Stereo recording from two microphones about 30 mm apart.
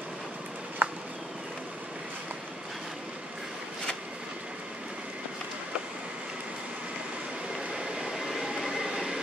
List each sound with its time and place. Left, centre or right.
0.8 s a sound: right
7.5 s vehicle: right
8.1 s train: centre